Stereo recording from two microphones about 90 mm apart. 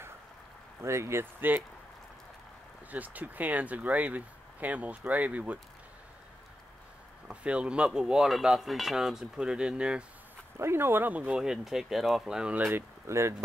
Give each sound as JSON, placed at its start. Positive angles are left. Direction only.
{"t": 0.8, "sound": "speech", "side_deg": -30}
{"t": 2.9, "sound": "cutlery", "side_deg": -20}
{"t": 7.2, "sound": "cutlery", "side_deg": -10}
{"t": 10.6, "sound": "cutlery", "side_deg": -25}
{"t": 12.5, "sound": "speech", "side_deg": -25}